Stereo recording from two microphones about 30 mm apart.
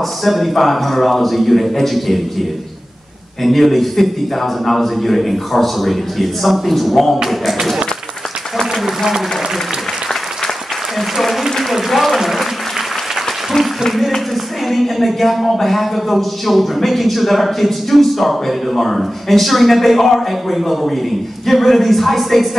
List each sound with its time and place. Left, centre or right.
0.2 s speech: centre
3.4 s speech: centre
8.8 s applause: centre
11.0 s applause: centre
13.6 s a sound: centre
14.3 s speech: centre